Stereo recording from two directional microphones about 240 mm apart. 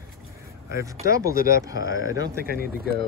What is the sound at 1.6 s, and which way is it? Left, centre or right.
Speech, centre.